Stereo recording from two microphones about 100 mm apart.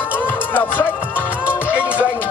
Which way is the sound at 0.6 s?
20° left (ahead or behind).